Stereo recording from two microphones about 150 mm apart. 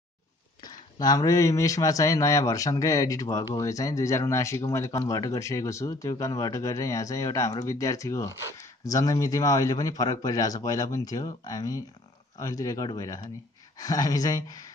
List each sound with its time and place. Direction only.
0.6 s a man's voice: 25° left (ahead or behind)